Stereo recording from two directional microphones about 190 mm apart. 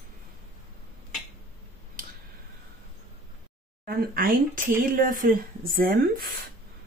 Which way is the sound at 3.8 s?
50° right (ahead or behind).